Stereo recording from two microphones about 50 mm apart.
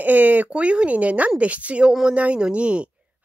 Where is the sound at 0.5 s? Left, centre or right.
Right.